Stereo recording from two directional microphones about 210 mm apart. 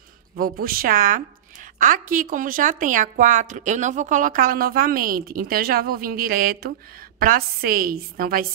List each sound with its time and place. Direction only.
0.4 s a woman's voice: 45° right (ahead or behind)